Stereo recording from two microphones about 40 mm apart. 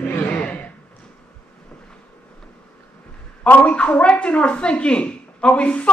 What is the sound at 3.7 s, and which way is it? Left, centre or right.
Speech, left.